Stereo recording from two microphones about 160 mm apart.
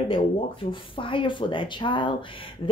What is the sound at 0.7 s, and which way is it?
Speech, 30° left (ahead or behind).